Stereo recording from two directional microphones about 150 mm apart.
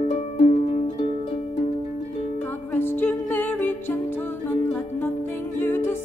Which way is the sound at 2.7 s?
15° left (ahead or behind).